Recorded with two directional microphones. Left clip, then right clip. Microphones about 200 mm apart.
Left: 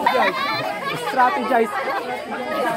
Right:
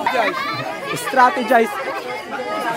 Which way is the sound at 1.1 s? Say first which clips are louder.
Right 4 dB; 55° right (ahead or behind).